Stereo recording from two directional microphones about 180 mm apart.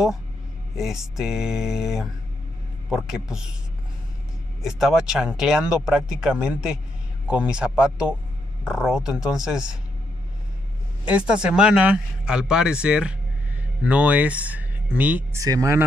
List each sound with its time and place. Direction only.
0.7 s speech: centre (ahead or behind)
4.6 s speech: centre (ahead or behind)
11.1 s speech: 5° right (ahead or behind)